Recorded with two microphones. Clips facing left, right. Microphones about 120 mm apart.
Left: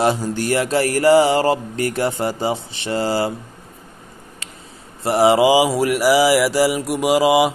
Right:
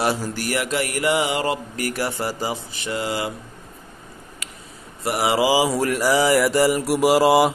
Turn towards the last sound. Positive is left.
turn(degrees=0)  # may be behind; listen again after turning